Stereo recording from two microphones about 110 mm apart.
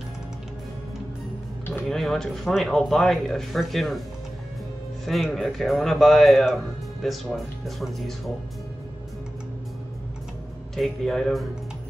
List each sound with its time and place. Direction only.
1.9 s speech: 5° left (ahead or behind)
5.0 s speech: centre (ahead or behind)
10.8 s speech: centre (ahead or behind)